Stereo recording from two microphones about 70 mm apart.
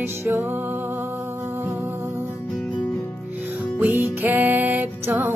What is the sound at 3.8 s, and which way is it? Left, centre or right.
Music, right.